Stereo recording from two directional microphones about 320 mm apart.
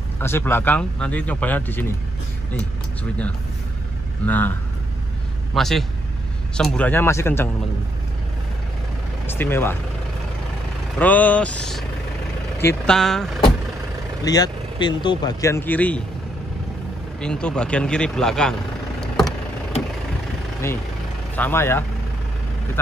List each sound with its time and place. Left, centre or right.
0.2 s speech: centre
4.3 s speech: centre
9.3 s speech: centre
11.0 s speech: centre
14.2 s speech: centre
17.2 s speech: centre
21.4 s speech: centre